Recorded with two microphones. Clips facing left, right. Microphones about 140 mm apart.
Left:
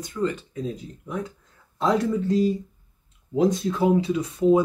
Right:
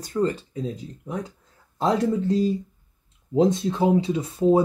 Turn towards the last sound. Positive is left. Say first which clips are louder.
# even
turn(degrees=-30)  # may be behind; listen again after turning